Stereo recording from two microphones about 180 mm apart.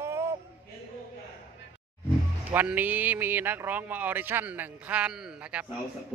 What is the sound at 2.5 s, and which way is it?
Speech, 10° right (ahead or behind).